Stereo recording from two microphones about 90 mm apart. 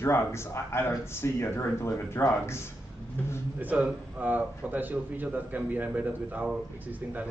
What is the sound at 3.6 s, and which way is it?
A man's voice, 20° right (ahead or behind).